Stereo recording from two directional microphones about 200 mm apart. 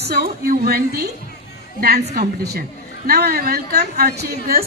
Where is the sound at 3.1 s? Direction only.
50° right (ahead or behind).